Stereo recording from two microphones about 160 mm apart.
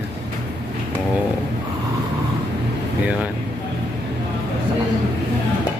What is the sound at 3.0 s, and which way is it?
Speech, 5° right (ahead or behind).